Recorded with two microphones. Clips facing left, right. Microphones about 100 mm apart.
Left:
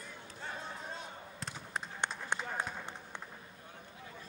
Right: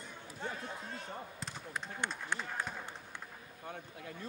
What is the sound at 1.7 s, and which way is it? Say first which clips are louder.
Run: left 1 dB; 20° left (ahead or behind).